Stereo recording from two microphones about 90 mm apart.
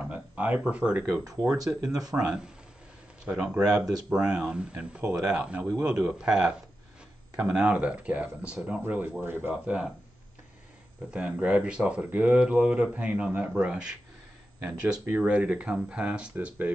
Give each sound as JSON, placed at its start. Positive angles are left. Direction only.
{"t": 0.0, "sound": "a sound", "side_deg": -15}
{"t": 1.9, "sound": "speech", "side_deg": -45}
{"t": 2.1, "sound": "speech", "side_deg": -10}
{"t": 9.6, "sound": "speech", "side_deg": -15}
{"t": 11.1, "sound": "speech", "side_deg": -10}